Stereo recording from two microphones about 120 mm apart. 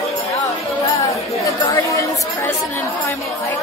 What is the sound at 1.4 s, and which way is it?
Chatter, 25° left (ahead or behind).